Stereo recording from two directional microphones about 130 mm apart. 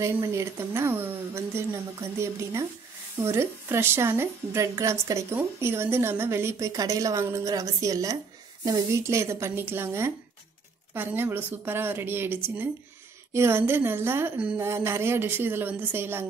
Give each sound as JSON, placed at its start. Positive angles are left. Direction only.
{"t": 0.0, "sound": "a woman's voice", "side_deg": -20}